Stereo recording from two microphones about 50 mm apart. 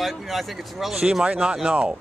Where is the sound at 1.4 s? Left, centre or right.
Centre.